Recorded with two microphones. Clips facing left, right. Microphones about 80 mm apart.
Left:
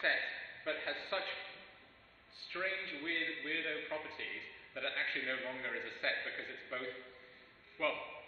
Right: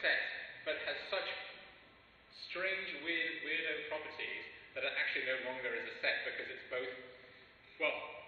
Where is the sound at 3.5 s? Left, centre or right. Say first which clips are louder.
Even; centre.